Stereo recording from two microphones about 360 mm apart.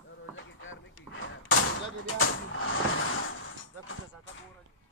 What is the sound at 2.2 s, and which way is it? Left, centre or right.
Vehicle, left.